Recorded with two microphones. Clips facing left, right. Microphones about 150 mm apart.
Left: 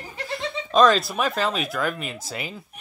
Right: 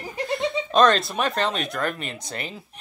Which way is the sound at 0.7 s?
Centre (ahead or behind).